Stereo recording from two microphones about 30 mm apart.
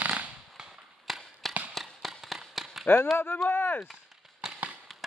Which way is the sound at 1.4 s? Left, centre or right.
Centre.